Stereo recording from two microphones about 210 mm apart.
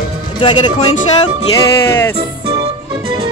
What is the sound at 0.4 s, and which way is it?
Speech, 20° left (ahead or behind).